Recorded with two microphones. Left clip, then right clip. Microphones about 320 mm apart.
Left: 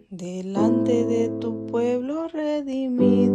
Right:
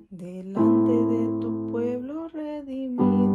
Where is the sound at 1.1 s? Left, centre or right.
Centre.